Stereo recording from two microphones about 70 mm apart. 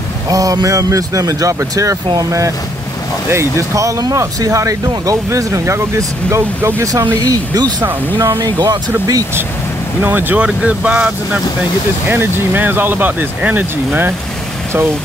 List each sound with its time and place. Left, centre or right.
0.3 s speech: right
7.2 s speech: right
7.8 s speech: right
10.0 s speech: right
10.4 s speech: centre